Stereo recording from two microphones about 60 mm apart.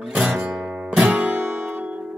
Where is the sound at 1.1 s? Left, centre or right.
Right.